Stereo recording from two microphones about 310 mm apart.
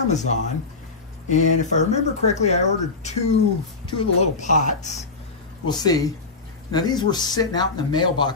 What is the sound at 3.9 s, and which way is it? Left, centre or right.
Speech, centre.